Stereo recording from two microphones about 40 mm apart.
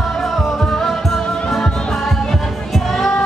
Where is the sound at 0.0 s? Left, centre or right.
Centre.